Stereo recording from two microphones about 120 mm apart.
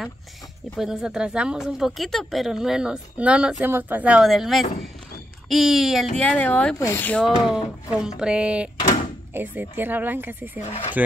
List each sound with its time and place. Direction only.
0.7 s speech: 5° right (ahead or behind)
6.2 s speech: 15° left (ahead or behind)
7.4 s speech: 5° right (ahead or behind)
10.7 s speech: 55° left (ahead or behind)